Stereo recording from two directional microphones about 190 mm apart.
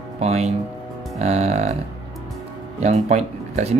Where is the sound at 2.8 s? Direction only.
35° right (ahead or behind).